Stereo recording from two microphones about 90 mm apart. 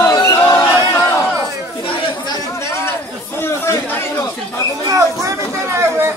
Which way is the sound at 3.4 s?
25° left (ahead or behind).